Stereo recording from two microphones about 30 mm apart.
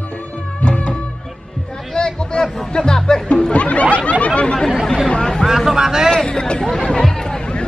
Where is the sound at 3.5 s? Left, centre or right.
Left.